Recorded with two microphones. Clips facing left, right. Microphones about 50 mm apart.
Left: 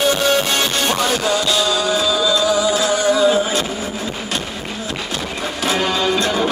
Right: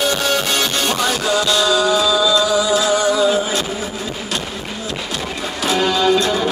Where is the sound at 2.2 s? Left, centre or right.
Left.